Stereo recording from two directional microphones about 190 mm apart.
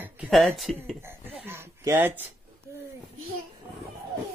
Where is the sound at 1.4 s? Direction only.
10° right (ahead or behind).